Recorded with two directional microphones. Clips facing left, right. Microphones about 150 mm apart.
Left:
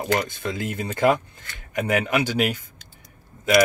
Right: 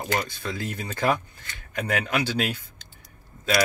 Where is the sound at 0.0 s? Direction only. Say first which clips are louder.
Left 4 dB; 20° left (ahead or behind).